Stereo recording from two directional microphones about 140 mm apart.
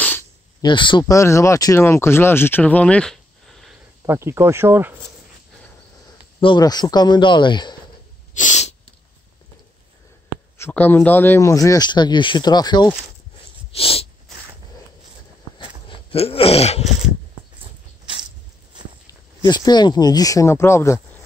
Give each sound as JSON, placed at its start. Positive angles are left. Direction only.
{"t": 0.0, "sound": "a sound", "side_deg": 15}
{"t": 0.6, "sound": "a man's voice", "side_deg": 35}
{"t": 1.1, "sound": "speech", "side_deg": 20}
{"t": 4.0, "sound": "speech", "side_deg": -20}
{"t": 6.4, "sound": "a man's voice", "side_deg": 30}
{"t": 8.4, "sound": "sneeze", "side_deg": 55}
{"t": 10.6, "sound": "speech", "side_deg": 15}
{"t": 13.7, "sound": "sneeze", "side_deg": 45}
{"t": 15.5, "sound": "a sound", "side_deg": 40}
{"t": 19.0, "sound": "speech", "side_deg": 30}